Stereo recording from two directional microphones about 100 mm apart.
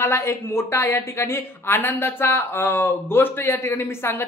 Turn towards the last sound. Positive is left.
turn(degrees=25)  # may be behind; listen again after turning